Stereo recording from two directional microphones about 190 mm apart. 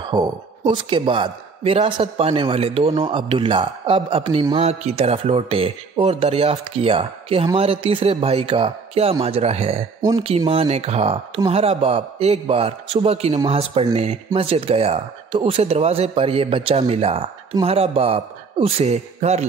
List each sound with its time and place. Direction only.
0.1 s a man's voice: 25° right (ahead or behind)